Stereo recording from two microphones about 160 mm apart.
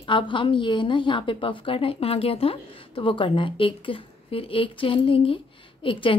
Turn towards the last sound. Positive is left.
turn(degrees=30)  # may be behind; listen again after turning